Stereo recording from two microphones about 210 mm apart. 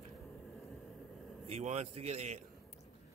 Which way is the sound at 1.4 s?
30° right (ahead or behind).